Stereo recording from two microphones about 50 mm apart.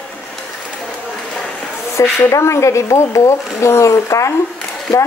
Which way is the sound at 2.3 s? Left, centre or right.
Left.